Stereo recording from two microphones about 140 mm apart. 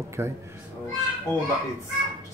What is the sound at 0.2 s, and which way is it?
Speech, 15° right (ahead or behind).